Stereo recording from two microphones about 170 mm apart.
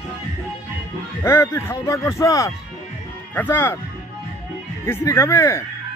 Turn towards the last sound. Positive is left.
turn(degrees=15)  # may be behind; listen again after turning